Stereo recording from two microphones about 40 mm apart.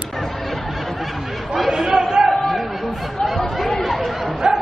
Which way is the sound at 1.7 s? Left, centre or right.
Centre.